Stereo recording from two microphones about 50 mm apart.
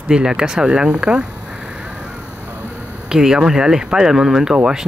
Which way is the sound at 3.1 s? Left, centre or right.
Centre.